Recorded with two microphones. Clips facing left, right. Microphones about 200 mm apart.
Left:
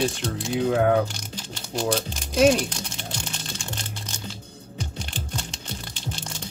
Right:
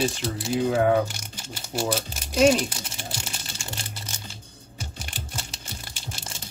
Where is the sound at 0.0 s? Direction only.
5° right (ahead or behind).